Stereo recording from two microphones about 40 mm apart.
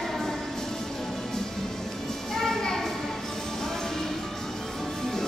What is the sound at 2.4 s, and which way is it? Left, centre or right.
Children playing, centre.